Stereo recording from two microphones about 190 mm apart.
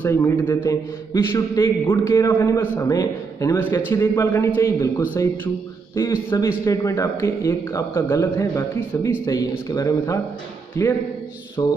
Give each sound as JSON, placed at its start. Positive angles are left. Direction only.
{"t": 0.0, "sound": "a man's voice", "side_deg": 10}
{"t": 6.6, "sound": "a man's voice", "side_deg": 15}
{"t": 11.6, "sound": "music", "side_deg": 20}